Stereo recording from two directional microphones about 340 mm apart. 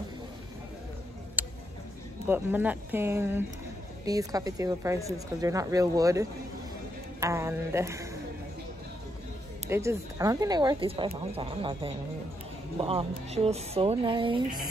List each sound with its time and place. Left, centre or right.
1.4 s tick: centre
2.2 s speech: centre
9.7 s speech: centre